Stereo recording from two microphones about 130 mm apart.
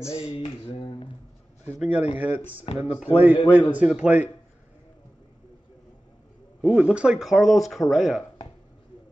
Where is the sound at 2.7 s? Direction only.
45° left (ahead or behind).